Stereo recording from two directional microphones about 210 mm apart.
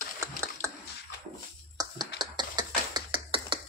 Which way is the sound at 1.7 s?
20° right (ahead or behind).